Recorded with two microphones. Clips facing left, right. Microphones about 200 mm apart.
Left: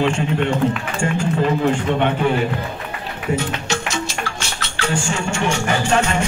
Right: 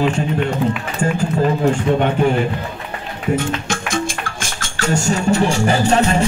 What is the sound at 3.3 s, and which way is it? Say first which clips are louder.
Speech: right 2 dB; 50° right (ahead or behind).